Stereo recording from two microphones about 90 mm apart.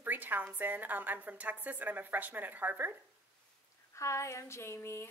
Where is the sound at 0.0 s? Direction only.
20° right (ahead or behind).